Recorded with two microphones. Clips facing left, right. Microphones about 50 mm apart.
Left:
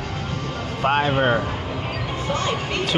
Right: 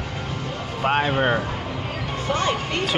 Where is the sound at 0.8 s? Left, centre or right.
Centre.